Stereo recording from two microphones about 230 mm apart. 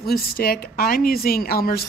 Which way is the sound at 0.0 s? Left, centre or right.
Left.